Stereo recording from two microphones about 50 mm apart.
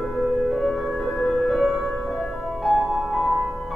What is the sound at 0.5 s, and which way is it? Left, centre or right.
Music, centre.